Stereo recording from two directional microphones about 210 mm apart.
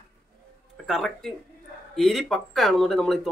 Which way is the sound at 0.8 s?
Centre (ahead or behind).